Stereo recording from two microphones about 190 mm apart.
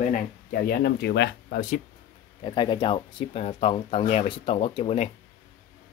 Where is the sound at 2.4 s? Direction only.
25° left (ahead or behind).